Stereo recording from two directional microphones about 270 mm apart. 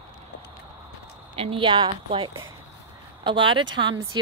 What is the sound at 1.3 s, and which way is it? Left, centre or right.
A woman's voice, right.